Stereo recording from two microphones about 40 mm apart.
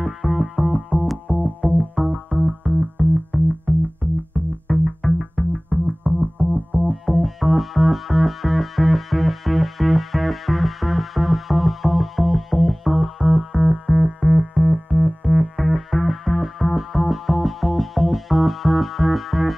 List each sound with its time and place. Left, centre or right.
0.0 s music: centre
3.7 s synthesizer: left
4.6 s music: centre
6.4 s synthesizer: left
6.9 s music: centre